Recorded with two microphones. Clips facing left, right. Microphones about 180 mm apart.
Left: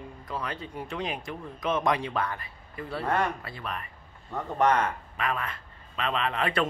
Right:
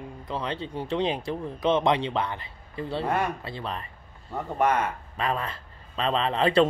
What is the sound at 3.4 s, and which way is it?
Speech, 25° right (ahead or behind).